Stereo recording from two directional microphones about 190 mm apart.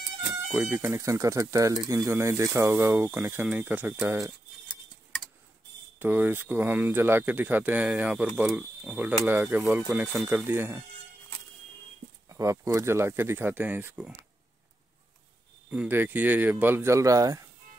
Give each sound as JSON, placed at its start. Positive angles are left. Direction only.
{"t": 0.5, "sound": "speech", "side_deg": -10}
{"t": 5.9, "sound": "speech", "side_deg": -10}
{"t": 12.3, "sound": "speech", "side_deg": -15}
{"t": 15.7, "sound": "speech", "side_deg": -10}